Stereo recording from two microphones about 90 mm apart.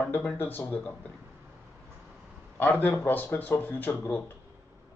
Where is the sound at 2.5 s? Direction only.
20° left (ahead or behind).